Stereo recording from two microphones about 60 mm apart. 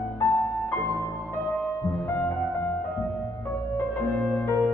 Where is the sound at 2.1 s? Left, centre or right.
Left.